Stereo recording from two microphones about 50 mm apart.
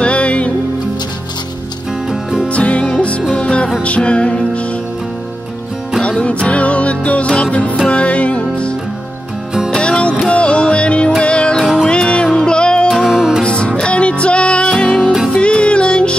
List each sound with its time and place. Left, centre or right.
0.0 s music: left
2.4 s music: left
6.0 s music: left
12.9 s music: centre
13.4 s music: left